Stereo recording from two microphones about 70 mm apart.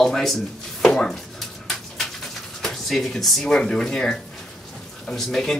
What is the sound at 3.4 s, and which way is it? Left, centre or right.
Speech, centre.